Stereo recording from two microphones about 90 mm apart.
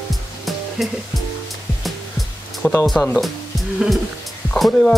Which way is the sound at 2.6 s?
25° left (ahead or behind).